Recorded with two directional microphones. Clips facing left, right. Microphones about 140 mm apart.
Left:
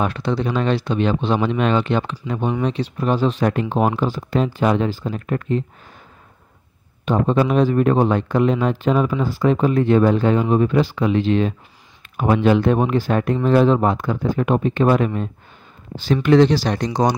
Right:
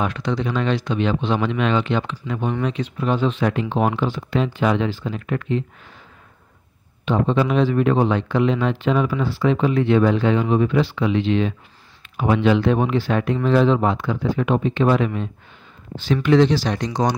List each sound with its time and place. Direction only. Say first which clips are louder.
0.0 s speech: left 2 dB; 35° left (ahead or behind)
7.1 s speech: left 2 dB; 45° left (ahead or behind)
16.0 s speech: left 2 dB; 40° left (ahead or behind)